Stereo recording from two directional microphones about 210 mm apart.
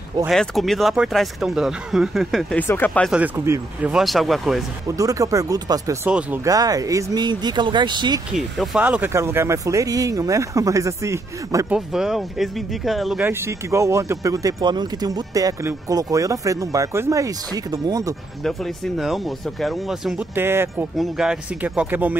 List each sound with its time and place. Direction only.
0.3 s speech: centre (ahead or behind)
3.2 s speech: 10° right (ahead or behind)
4.9 s speech: 15° right (ahead or behind)
8.3 s speech: centre (ahead or behind)
11.9 s speech: centre (ahead or behind); by 18.1 s 15° right (ahead or behind)
18.4 s speech: centre (ahead or behind)